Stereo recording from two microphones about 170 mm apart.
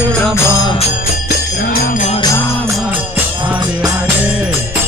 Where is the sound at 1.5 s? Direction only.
60° left (ahead or behind).